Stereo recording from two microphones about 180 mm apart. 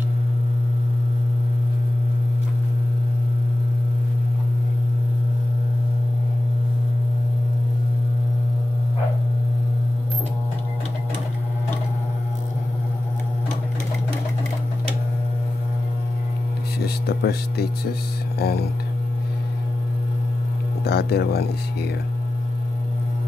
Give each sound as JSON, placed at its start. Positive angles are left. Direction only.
{"t": 16.8, "sound": "speech", "side_deg": 60}
{"t": 20.8, "sound": "speech", "side_deg": 60}